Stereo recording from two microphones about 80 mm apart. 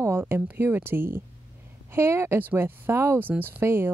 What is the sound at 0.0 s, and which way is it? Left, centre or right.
A woman's voice, right.